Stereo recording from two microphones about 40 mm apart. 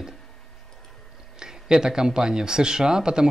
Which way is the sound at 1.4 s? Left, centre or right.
Centre.